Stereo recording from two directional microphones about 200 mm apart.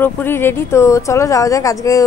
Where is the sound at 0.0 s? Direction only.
10° left (ahead or behind).